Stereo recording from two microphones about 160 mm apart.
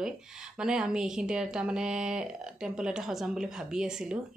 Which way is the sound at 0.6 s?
5° right (ahead or behind).